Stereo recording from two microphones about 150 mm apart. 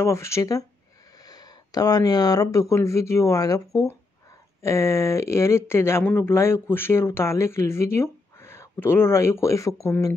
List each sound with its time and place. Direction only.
0.0 s speech: 20° left (ahead or behind)